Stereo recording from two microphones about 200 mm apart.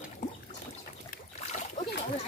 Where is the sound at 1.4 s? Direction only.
35° left (ahead or behind).